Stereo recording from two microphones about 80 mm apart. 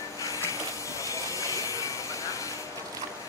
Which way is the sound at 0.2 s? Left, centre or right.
Left.